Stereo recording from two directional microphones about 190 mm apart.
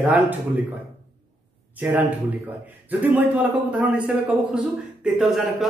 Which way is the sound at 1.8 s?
10° right (ahead or behind).